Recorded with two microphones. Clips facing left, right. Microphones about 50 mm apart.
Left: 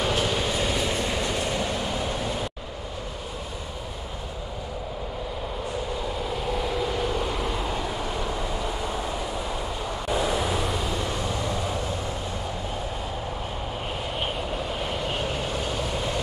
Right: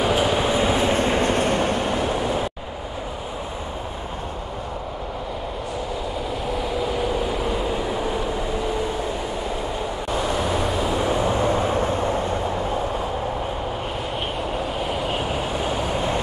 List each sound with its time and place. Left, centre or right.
0.0 s train: centre; by 2.0 s right
2.0 s vehicle: right
6.3 s vehicle: centre
10.1 s vehicle: centre
11.0 s vehicle: right
14.8 s vehicle: centre; by 16.2 s right